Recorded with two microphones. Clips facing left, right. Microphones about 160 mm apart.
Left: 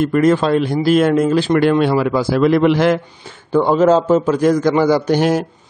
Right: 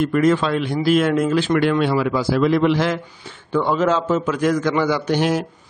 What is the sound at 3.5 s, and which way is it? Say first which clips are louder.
A man's voice: left 6 dB; 40° left (ahead or behind).